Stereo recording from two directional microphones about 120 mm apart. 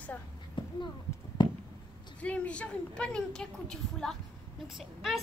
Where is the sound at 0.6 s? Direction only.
45° left (ahead or behind).